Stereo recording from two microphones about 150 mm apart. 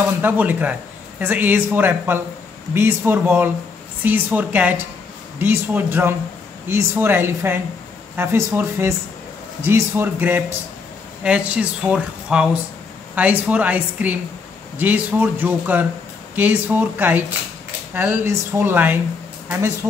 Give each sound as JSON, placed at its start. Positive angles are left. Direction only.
{"t": 0.2, "sound": "speech", "side_deg": -10}